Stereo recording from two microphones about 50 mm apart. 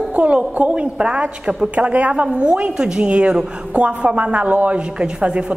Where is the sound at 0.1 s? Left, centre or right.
Right.